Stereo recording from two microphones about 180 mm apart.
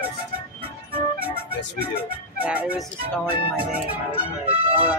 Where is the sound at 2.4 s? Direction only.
10° right (ahead or behind).